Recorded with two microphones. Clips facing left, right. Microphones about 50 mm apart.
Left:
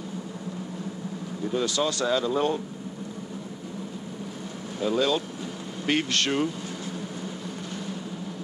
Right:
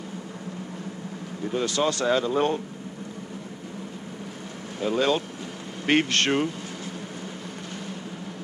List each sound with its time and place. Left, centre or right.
1.4 s speech: right
4.7 s speech: right